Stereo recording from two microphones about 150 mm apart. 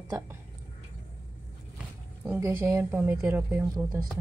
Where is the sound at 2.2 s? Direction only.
20° right (ahead or behind).